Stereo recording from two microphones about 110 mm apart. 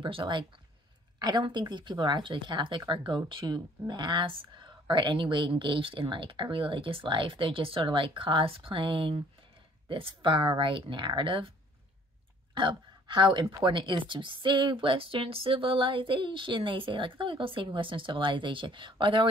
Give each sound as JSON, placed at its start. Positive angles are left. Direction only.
{"t": 0.0, "sound": "speech", "side_deg": -50}
{"t": 12.5, "sound": "speech", "side_deg": -50}